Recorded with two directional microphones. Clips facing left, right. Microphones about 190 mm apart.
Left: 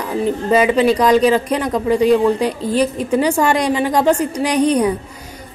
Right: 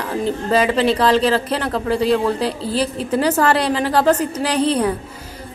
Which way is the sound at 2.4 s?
35° right (ahead or behind).